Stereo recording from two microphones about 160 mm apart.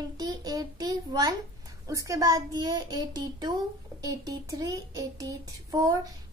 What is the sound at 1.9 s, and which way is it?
A child's voice, 20° right (ahead or behind).